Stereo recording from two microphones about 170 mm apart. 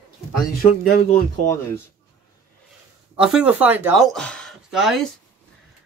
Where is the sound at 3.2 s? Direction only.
5° right (ahead or behind).